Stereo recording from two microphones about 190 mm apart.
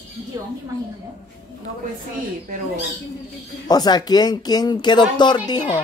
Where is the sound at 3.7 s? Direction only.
20° left (ahead or behind).